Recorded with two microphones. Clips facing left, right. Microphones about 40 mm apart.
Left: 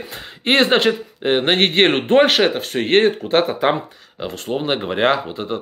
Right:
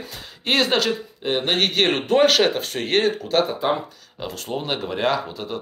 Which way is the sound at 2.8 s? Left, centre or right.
Left.